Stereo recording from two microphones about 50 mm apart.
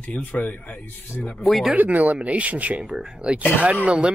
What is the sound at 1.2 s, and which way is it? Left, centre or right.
Speech, left.